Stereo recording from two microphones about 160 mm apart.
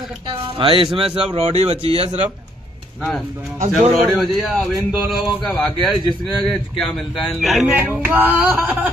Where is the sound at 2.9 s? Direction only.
Centre (ahead or behind).